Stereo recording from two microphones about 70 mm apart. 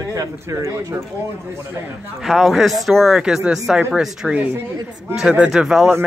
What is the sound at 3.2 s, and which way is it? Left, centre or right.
Speech, centre.